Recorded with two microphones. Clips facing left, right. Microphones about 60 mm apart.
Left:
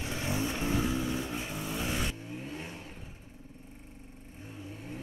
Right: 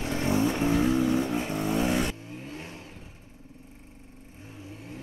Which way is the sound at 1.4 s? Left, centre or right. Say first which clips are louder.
Right 8 dB; right.